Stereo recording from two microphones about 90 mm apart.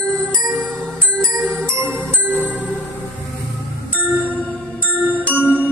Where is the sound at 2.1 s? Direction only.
15° left (ahead or behind).